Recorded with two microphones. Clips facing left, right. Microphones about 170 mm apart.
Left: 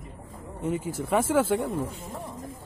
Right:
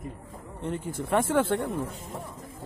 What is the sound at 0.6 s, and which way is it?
Speech, 5° left (ahead or behind).